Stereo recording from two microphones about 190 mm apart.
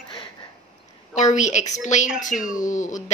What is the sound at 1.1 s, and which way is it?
A woman's voice, 40° left (ahead or behind).